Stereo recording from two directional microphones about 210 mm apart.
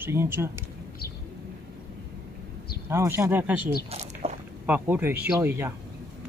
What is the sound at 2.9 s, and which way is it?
Speech, 10° right (ahead or behind).